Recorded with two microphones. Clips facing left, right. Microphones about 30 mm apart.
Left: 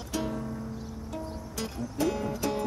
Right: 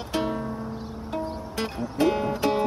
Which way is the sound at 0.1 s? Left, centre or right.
Right.